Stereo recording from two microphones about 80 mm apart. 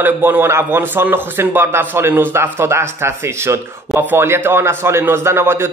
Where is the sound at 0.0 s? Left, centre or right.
Right.